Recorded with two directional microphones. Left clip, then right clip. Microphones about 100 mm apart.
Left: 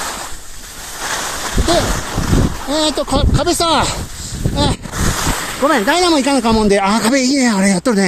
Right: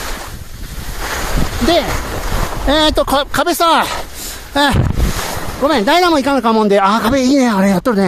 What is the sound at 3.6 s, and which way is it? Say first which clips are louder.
Speech: right 3 dB; 90° right.